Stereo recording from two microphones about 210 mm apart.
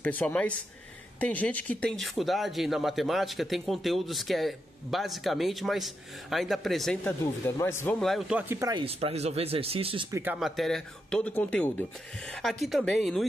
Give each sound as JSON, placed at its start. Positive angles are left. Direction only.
{"t": 0.0, "sound": "speech", "side_deg": 10}
{"t": 8.0, "sound": "speech", "side_deg": 0}
{"t": 10.1, "sound": "speech", "side_deg": -5}